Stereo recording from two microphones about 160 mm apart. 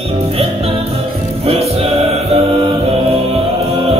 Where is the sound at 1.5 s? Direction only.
40° right (ahead or behind).